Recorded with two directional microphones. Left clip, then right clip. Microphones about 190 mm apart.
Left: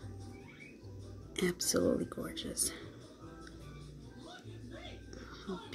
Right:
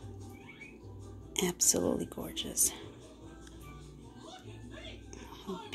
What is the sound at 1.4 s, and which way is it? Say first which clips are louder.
Speech: right 2 dB; 15° left (ahead or behind).